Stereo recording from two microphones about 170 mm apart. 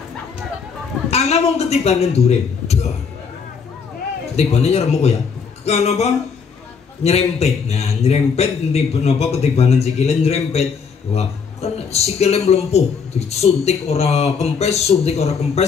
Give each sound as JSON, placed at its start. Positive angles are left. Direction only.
{"t": 1.1, "sound": "a man's voice", "side_deg": 40}
{"t": 4.4, "sound": "speech", "side_deg": 40}